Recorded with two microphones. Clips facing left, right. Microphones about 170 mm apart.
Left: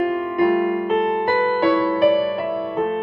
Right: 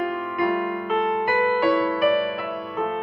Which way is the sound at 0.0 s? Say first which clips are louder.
Left 6 dB; 35° left (ahead or behind).